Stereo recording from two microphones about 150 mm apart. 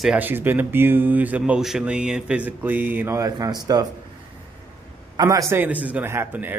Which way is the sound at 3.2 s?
25° right (ahead or behind).